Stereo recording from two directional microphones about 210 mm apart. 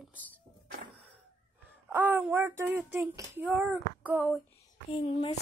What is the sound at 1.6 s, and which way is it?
Speech, 10° right (ahead or behind).